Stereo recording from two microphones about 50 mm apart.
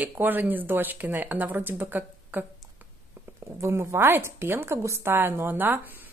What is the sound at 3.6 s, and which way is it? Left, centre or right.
Speech, right.